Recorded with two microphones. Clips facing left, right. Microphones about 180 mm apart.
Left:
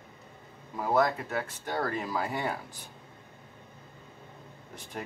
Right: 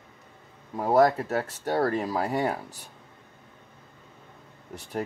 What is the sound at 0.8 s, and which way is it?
Speech, 35° right (ahead or behind).